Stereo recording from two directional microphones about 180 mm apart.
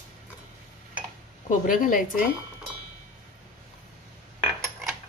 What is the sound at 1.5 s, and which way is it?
Speech, 50° left (ahead or behind).